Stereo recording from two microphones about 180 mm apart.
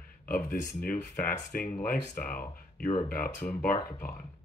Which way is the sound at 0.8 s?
45° left (ahead or behind).